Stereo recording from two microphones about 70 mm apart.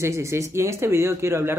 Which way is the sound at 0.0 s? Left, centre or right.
Right.